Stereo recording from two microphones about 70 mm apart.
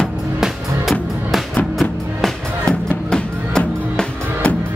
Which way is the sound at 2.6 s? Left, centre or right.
Centre.